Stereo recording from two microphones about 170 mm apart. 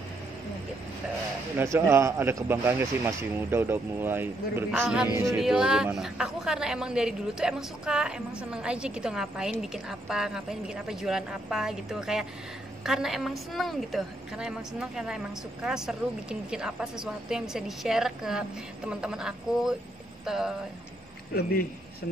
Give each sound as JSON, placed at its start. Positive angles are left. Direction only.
{"t": 1.6, "sound": "a man's voice", "side_deg": -15}
{"t": 21.4, "sound": "a man's voice", "side_deg": 65}